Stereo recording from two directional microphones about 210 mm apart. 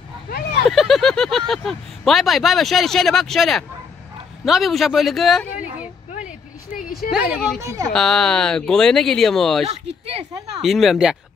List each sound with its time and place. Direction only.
0.7 s speech: centre (ahead or behind)
7.1 s speech: 5° right (ahead or behind)
7.6 s speech: 15° right (ahead or behind)
7.9 s speech: centre (ahead or behind)
9.7 s speech: 30° right (ahead or behind)
10.6 s speech: centre (ahead or behind)